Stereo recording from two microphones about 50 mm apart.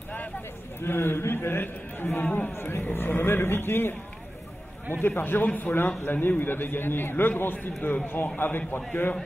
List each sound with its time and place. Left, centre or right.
0.7 s a man's voice: left
2.2 s speech: left
2.5 s a man's voice: left
4.9 s a man's voice: left